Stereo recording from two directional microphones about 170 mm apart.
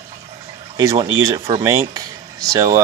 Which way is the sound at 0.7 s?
20° right (ahead or behind).